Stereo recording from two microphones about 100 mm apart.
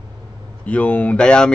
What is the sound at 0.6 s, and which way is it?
Speech, 15° left (ahead or behind).